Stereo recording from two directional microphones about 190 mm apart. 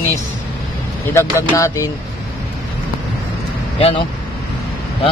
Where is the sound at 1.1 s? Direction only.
15° left (ahead or behind).